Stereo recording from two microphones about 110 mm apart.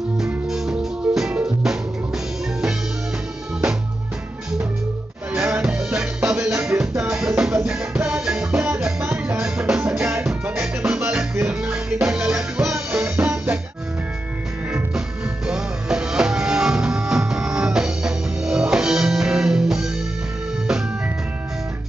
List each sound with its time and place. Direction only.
0.5 s music: 5° right (ahead or behind)
5.3 s music: 5° right (ahead or behind)
12.9 s music: 15° right (ahead or behind)
14.7 s music: 5° right (ahead or behind)